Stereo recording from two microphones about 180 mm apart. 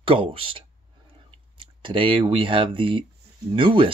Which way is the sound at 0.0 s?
30° right (ahead or behind).